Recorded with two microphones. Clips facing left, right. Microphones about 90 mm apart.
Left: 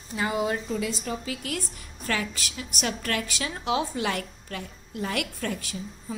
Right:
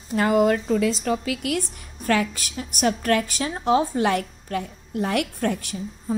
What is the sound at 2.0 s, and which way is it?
A woman's voice, 50° right (ahead or behind).